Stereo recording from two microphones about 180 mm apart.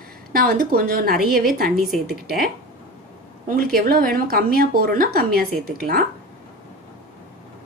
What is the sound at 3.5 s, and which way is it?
Speech, 55° right (ahead or behind).